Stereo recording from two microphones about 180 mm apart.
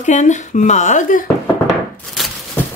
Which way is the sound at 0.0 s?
40° left (ahead or behind).